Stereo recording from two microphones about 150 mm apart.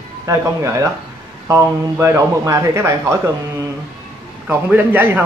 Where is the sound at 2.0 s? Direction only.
15° right (ahead or behind).